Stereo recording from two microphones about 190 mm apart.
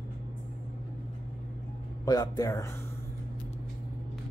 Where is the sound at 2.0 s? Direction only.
20° left (ahead or behind).